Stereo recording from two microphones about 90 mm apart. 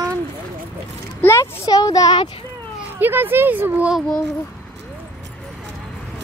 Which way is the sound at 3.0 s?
20° right (ahead or behind).